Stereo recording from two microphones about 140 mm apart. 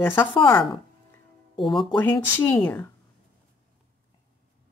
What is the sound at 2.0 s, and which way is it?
Speech, 15° left (ahead or behind).